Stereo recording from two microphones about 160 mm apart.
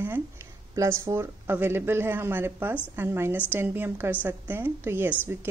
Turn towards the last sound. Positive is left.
turn(degrees=-15)  # may be behind; listen again after turning